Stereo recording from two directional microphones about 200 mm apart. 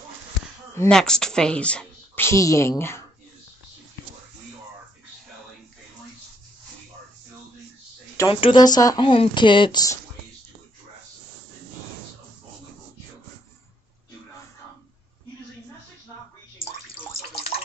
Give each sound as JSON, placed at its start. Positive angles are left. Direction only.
{"t": 0.7, "sound": "speech", "side_deg": 5}
{"t": 8.3, "sound": "speech", "side_deg": 25}